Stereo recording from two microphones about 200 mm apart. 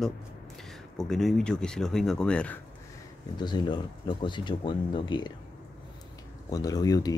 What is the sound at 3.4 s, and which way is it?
Speech, 20° left (ahead or behind).